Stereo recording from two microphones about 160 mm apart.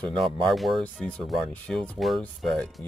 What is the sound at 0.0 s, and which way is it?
Speech, centre (ahead or behind).